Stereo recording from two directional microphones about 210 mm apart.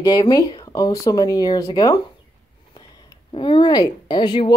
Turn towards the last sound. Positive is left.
turn(degrees=20)  # may be behind; listen again after turning